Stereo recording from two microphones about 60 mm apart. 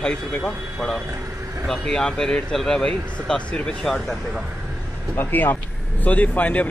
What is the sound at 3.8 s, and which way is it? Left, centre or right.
Speech, centre.